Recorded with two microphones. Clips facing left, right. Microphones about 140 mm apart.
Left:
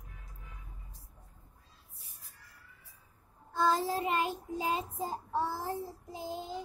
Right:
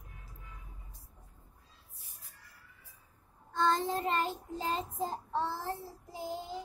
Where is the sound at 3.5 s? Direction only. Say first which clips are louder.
Left 1 dB; 5° left (ahead or behind).